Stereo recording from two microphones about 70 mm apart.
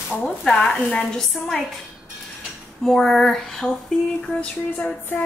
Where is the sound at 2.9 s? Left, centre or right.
Centre.